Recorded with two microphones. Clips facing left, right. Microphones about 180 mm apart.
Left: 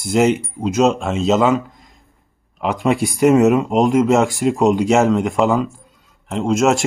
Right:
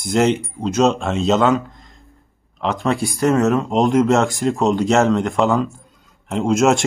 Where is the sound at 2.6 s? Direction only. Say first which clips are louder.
Left 2 dB; 15° left (ahead or behind).